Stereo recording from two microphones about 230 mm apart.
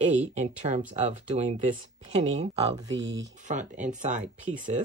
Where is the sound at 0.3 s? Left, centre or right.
Right.